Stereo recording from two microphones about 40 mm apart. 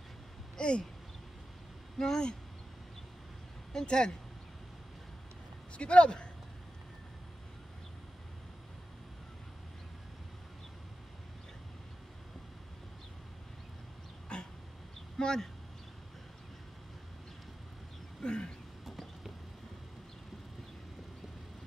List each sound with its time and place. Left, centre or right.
0.6 s speech: left
2.0 s speech: centre
3.7 s speech: left
5.8 s speech: left
14.3 s dog: left
15.1 s speech: centre
18.2 s a sound: left
18.9 s a sound: centre